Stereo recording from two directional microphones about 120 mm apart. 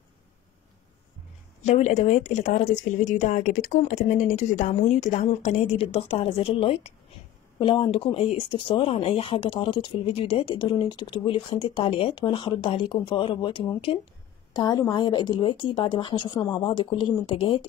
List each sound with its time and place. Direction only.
1.6 s a woman's voice: 75° left (ahead or behind)
5.8 s a woman's voice: 55° left (ahead or behind)
7.5 s speech: 40° left (ahead or behind)
14.5 s speech: 35° left (ahead or behind)